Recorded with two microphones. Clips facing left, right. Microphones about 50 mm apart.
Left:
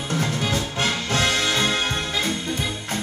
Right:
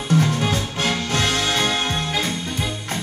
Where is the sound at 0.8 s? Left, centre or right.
Left.